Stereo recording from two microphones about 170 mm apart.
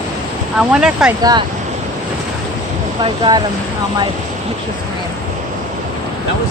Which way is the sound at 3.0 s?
30° right (ahead or behind).